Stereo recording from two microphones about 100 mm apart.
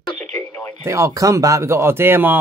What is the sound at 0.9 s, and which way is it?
Speech, 30° right (ahead or behind).